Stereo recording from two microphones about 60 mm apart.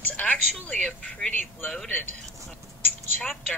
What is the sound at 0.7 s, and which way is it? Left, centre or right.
Speech, centre.